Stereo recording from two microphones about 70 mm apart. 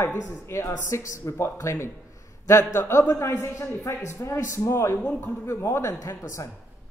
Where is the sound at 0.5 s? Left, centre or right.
Left.